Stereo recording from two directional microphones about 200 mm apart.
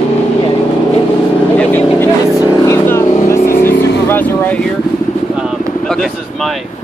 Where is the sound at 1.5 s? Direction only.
10° left (ahead or behind).